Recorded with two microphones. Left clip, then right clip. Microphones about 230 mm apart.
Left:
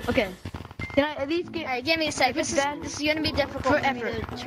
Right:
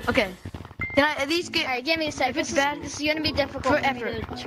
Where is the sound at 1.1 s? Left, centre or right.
Right.